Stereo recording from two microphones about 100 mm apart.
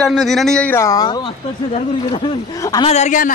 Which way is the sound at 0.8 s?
40° left (ahead or behind).